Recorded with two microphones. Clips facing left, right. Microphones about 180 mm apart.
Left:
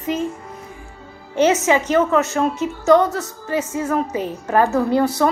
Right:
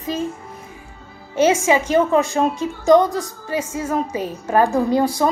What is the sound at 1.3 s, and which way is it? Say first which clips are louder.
A woman's voice: even; 10° right (ahead or behind).